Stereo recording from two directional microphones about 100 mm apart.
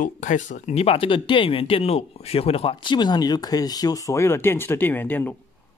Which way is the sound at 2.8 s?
50° left (ahead or behind).